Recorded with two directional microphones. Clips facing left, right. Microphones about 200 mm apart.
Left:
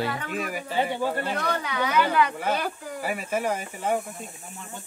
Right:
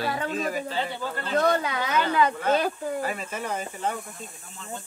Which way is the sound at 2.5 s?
25° right (ahead or behind).